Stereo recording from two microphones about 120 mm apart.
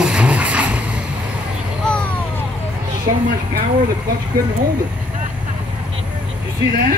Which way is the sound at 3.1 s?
55° right (ahead or behind).